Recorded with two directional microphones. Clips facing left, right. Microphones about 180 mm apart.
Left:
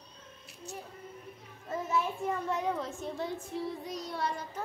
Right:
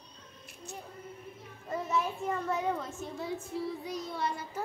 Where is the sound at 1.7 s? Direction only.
5° left (ahead or behind).